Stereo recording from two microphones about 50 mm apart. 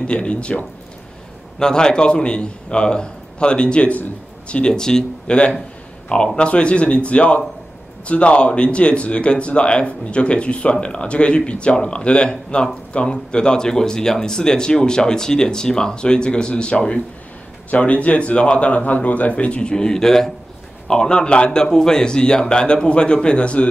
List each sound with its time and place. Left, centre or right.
0.0 s speech: left